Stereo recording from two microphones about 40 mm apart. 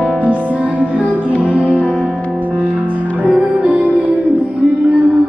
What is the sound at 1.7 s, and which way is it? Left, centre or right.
Music, left.